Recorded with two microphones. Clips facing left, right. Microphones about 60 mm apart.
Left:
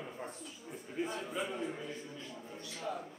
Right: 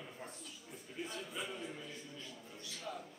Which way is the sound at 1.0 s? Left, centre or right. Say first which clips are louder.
Left 8 dB; left.